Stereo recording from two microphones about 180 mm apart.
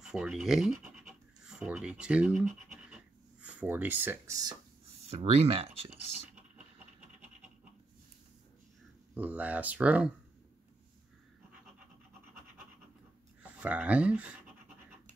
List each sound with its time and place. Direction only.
0.0 s speech: 5° right (ahead or behind)
3.4 s speech: 10° right (ahead or behind)
5.1 s speech: 35° right (ahead or behind)
9.1 s speech: 10° right (ahead or behind)
13.4 s speech: 10° right (ahead or behind)